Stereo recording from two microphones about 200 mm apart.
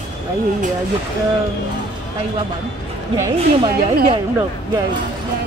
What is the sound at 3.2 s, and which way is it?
A woman's voice, 20° right (ahead or behind).